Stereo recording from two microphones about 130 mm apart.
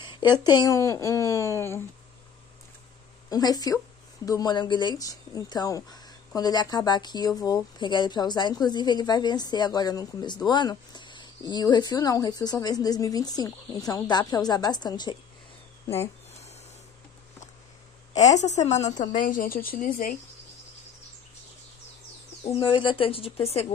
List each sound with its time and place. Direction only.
0.0 s a sound: 40° left (ahead or behind)
0.4 s speech: 30° left (ahead or behind)
3.3 s speech: 30° left (ahead or behind)
18.1 s a woman's voice: 65° left (ahead or behind)
18.9 s speech: 80° left
22.4 s speech: 45° left (ahead or behind)